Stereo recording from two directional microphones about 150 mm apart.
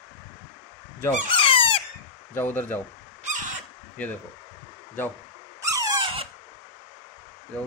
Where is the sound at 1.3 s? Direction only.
35° left (ahead or behind).